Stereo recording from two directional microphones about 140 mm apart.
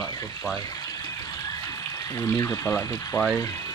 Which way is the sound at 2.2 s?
20° left (ahead or behind).